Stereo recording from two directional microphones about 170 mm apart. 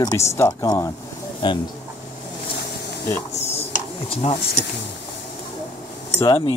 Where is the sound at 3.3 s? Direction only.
40° left (ahead or behind).